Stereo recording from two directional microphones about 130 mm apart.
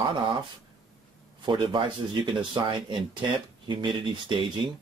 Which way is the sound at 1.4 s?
40° right (ahead or behind).